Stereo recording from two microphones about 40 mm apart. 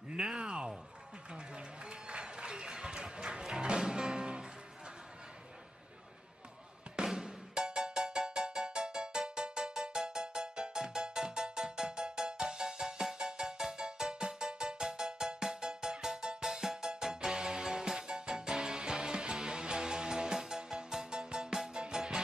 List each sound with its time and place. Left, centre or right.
0.1 s a sound: centre
1.3 s applause: right
7.1 s cowbell: centre
13.0 s music: centre